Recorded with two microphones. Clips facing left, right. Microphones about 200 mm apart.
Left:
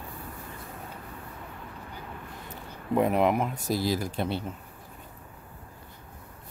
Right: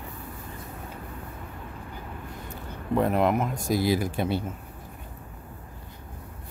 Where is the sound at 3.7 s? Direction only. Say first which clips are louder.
Right 4 dB; 55° right (ahead or behind).